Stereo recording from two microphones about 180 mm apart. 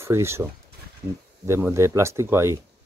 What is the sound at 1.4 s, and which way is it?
Speech, 15° right (ahead or behind).